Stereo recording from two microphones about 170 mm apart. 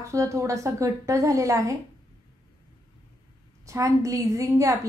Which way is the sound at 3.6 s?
20° right (ahead or behind).